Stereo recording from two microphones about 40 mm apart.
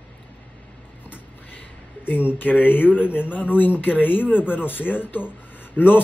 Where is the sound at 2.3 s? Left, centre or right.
Left.